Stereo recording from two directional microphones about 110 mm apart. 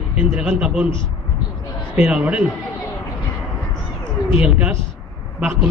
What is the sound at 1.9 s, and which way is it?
Speech, 10° right (ahead or behind).